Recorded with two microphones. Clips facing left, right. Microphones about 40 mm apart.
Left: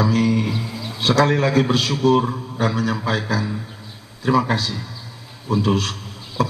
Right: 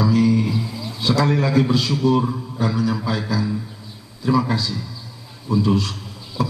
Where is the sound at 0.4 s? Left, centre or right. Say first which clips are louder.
Right 1 dB; left.